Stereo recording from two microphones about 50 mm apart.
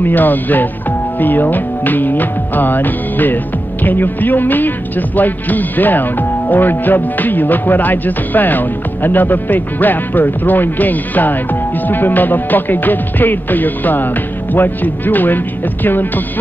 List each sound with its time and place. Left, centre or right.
0.0 s music: left